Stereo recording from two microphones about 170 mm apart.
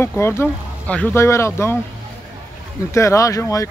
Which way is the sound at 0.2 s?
15° left (ahead or behind).